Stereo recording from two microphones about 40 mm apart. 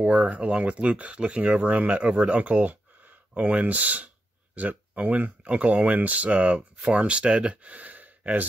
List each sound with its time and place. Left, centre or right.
0.0 s speech: right